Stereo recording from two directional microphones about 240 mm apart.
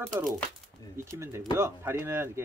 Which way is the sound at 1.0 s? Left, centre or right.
Centre.